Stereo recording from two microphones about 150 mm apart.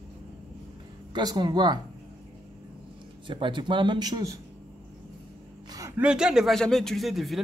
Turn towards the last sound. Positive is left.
turn(degrees=0)  # may be behind; listen again after turning